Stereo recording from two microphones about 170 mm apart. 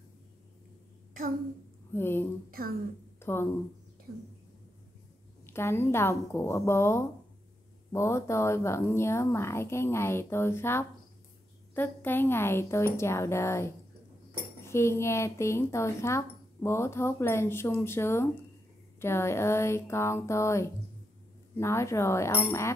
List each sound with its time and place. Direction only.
2.0 s speech: 15° left (ahead or behind)
3.2 s a sound: 15° left (ahead or behind)
5.5 s speech: 15° left (ahead or behind)